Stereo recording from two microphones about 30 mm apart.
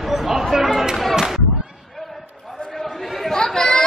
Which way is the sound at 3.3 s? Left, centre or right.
Left.